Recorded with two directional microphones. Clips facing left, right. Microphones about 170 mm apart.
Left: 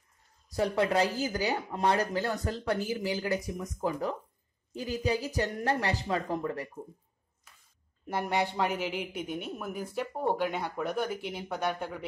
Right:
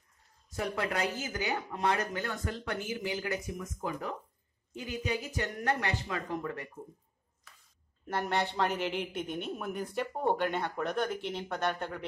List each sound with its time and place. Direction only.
0.5 s speech: 30° left (ahead or behind)
8.1 s speech: 10° left (ahead or behind)